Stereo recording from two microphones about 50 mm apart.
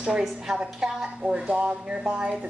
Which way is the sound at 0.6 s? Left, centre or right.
Centre.